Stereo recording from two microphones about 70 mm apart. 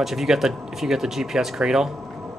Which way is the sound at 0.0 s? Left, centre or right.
Centre.